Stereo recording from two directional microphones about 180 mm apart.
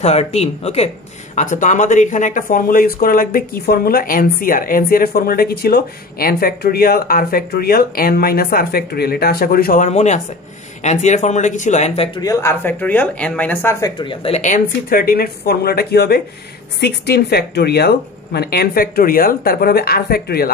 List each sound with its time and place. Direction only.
0.0 s speech: 35° left (ahead or behind)
12.2 s speech: 15° left (ahead or behind); by 20.5 s 60° left (ahead or behind)